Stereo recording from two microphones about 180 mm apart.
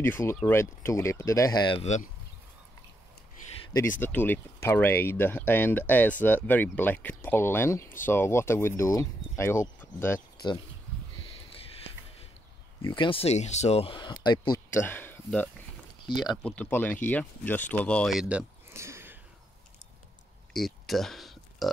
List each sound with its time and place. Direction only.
0.0 s speech: 15° left (ahead or behind)
1.8 s speech: 40° left (ahead or behind)
4.0 s speech: 10° left (ahead or behind)
12.8 s speech: 25° left (ahead or behind)
14.7 s speech: 10° left (ahead or behind)
16.1 s speech: 25° left (ahead or behind)
16.4 s speech: 10° left (ahead or behind)
18.7 s a sound: 15° right (ahead or behind)
20.5 s a sound: centre (ahead or behind)